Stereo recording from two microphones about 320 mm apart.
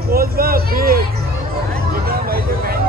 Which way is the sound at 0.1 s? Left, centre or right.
Right.